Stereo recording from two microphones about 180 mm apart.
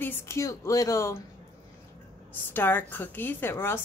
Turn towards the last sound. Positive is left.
turn(degrees=15)  # may be behind; listen again after turning